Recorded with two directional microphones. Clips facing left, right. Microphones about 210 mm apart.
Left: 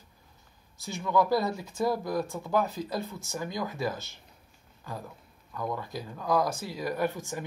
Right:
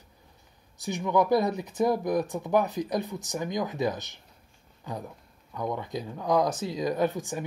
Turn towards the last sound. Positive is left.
turn(degrees=-15)  # may be behind; listen again after turning